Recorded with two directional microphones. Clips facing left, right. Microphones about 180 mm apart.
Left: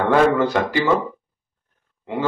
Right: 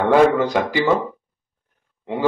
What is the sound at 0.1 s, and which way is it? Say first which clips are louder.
Speech: right 2 dB; 15° right (ahead or behind).